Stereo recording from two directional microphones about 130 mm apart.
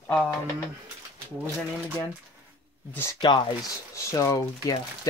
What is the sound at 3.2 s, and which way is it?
Speech, 35° left (ahead or behind).